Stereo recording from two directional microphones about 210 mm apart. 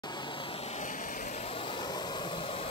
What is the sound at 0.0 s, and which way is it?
Vehicle, 20° left (ahead or behind).